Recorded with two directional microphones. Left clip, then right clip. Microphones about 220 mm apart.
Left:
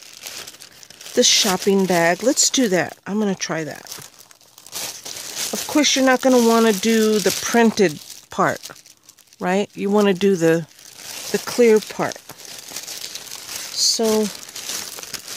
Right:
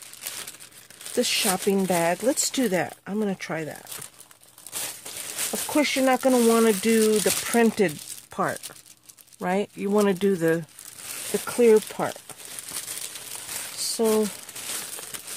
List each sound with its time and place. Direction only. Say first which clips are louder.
1.1 s speech: left 8 dB; 45° left (ahead or behind)
13.7 s crumpling: left 5 dB; 40° left (ahead or behind)